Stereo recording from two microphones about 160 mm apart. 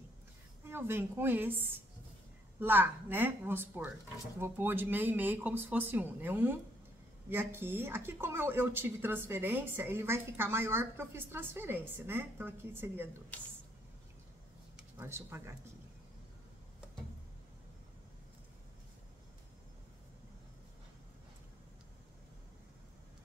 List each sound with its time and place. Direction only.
0.7 s speech: 15° right (ahead or behind)
14.8 s speech: 15° right (ahead or behind)